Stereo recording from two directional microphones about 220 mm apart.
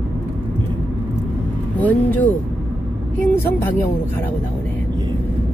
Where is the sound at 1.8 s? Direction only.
5° left (ahead or behind).